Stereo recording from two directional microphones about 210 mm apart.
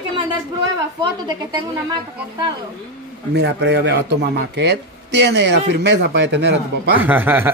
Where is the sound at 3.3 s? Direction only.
55° right (ahead or behind).